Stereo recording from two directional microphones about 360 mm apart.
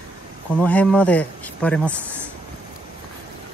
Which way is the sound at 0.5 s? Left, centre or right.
Centre.